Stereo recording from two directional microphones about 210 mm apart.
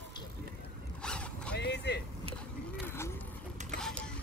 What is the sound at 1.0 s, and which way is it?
Zipper, 5° left (ahead or behind).